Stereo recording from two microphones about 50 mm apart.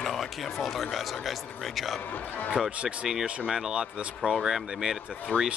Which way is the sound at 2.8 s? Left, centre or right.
Centre.